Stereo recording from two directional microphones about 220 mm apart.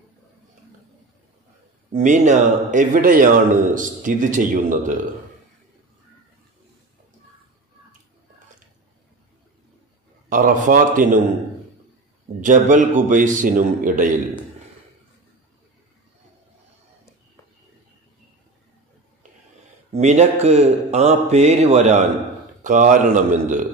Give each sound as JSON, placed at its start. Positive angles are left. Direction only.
{"t": 1.9, "sound": "a man's voice", "side_deg": -35}
{"t": 10.3, "sound": "a man's voice", "side_deg": -35}
{"t": 12.4, "sound": "a man's voice", "side_deg": -35}
{"t": 19.9, "sound": "a man's voice", "side_deg": -30}